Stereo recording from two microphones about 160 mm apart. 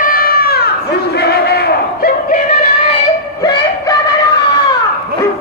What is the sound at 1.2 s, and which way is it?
Battle cry, 85° left.